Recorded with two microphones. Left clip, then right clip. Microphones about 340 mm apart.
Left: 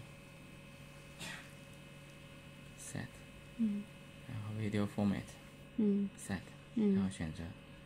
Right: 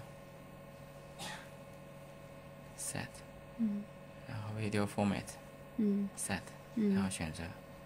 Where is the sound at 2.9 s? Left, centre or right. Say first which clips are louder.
Right 4 dB; right.